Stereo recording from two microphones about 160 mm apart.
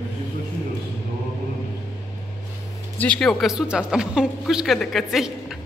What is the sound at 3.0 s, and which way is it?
Speech, 5° left (ahead or behind).